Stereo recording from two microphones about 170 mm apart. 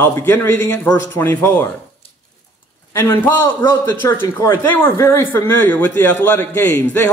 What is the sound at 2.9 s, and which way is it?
A man's voice, 15° left (ahead or behind).